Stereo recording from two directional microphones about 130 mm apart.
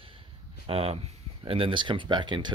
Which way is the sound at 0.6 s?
50° right (ahead or behind).